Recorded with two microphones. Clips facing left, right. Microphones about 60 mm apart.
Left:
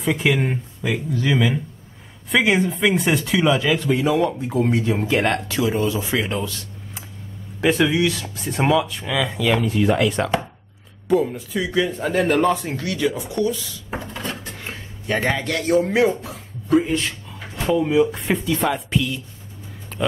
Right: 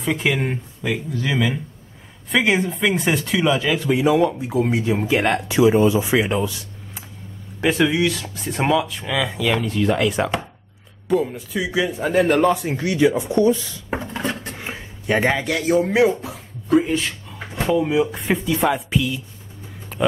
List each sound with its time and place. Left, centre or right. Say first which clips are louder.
0.0 s speech: left 1 dB; centre
7.6 s speech: even; centre
12.7 s speech: right 5 dB; centre
14.1 s dishes: right 4 dB; right
14.6 s speech: right 2 dB; centre
19.9 s a sound: right 3 dB; centre